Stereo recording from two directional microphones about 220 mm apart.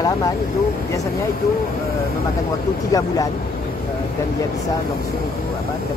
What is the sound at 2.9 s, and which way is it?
Speech, 15° left (ahead or behind).